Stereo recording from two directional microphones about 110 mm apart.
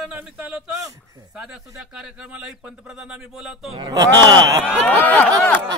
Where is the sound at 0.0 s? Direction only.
5° right (ahead or behind).